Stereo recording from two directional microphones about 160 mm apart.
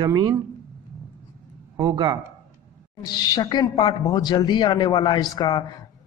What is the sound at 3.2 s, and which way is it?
A woman's voice, 25° left (ahead or behind).